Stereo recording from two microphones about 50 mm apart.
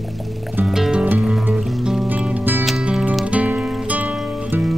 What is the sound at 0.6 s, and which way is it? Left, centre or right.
Music, centre.